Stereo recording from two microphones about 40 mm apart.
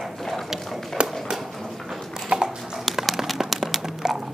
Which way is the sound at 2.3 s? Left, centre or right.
Right.